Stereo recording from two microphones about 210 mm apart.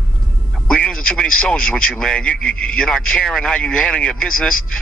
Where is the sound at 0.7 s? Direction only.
5° left (ahead or behind).